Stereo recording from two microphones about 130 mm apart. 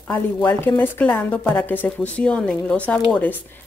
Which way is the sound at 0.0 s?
10° left (ahead or behind).